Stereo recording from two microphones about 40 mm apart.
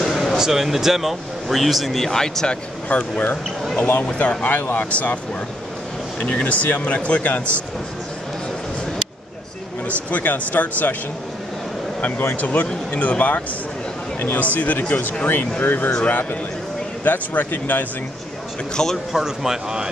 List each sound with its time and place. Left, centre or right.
0.0 s a sound: centre
0.4 s speech: centre
2.0 s speech: centre
2.9 s speech: left
4.7 s speech: left
6.1 s speech: left
9.8 s speech: left
12.4 s speech: left
18.8 s a man's voice: centre
19.1 s speech: centre